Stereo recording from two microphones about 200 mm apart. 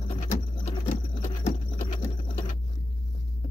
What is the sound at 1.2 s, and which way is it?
Patter, 40° left (ahead or behind).